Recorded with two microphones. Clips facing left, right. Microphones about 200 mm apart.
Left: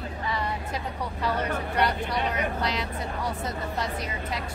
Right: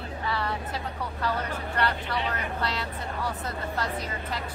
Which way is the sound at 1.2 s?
10° left (ahead or behind).